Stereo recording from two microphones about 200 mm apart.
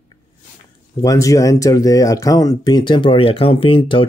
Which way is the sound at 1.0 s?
15° left (ahead or behind).